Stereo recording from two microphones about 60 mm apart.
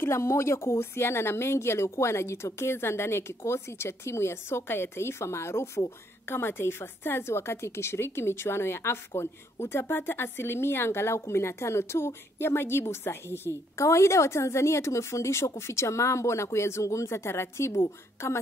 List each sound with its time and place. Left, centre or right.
0.0 s a woman's voice: left